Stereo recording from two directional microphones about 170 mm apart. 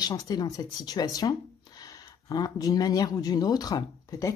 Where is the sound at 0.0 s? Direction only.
20° left (ahead or behind).